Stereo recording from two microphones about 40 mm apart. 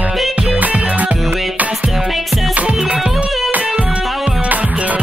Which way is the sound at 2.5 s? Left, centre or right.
Right.